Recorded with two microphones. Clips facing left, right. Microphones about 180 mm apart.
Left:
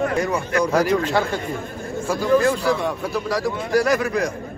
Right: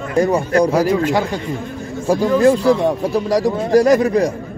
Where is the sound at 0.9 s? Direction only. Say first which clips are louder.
Right 3 dB; 15° right (ahead or behind).